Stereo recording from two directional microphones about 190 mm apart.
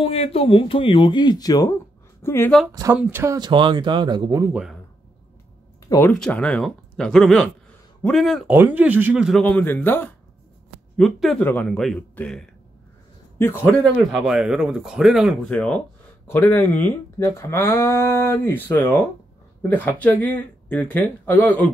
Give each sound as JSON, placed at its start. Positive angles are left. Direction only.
{"t": 0.0, "sound": "speech", "side_deg": 30}
{"t": 2.7, "sound": "speech", "side_deg": -20}
{"t": 3.3, "sound": "speech", "side_deg": -25}
{"t": 5.9, "sound": "speech", "side_deg": 10}
{"t": 9.4, "sound": "speech", "side_deg": 10}
{"t": 13.9, "sound": "speech", "side_deg": 0}